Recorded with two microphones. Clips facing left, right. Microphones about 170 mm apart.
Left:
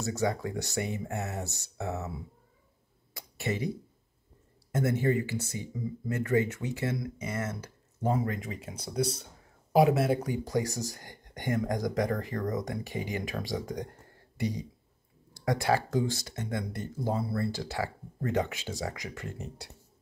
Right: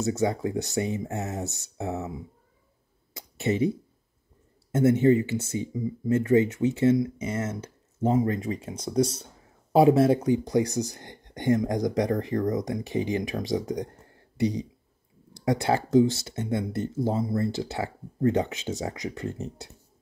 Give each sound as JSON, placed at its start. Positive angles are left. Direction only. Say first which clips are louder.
{"t": 0.0, "sound": "speech", "louder": "right 5 dB", "side_deg": -20}
{"t": 3.2, "sound": "a sound", "louder": "right 8 dB", "side_deg": -25}
{"t": 4.7, "sound": "speech", "louder": "right 8 dB", "side_deg": -25}
{"t": 8.5, "sound": "speech", "louder": "right 8 dB", "side_deg": -35}
{"t": 14.3, "sound": "a sound", "louder": "right 7 dB", "side_deg": -20}
{"t": 15.4, "sound": "speech", "louder": "right 3 dB", "side_deg": -25}